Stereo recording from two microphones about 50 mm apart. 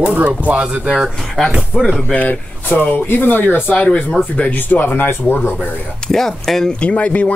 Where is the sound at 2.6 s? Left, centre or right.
Left.